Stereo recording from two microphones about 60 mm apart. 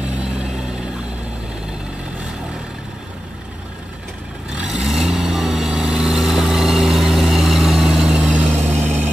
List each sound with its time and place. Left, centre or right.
4.6 s vehicle: centre
8.5 s vehicle: right